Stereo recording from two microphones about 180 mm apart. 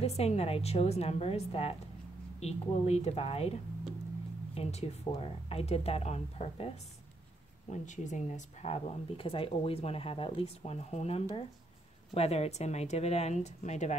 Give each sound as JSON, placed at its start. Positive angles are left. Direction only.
{"t": 0.0, "sound": "speech", "side_deg": 35}
{"t": 4.6, "sound": "speech", "side_deg": 35}
{"t": 7.7, "sound": "speech", "side_deg": 45}